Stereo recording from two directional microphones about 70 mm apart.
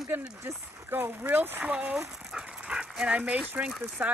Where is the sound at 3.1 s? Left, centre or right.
Centre.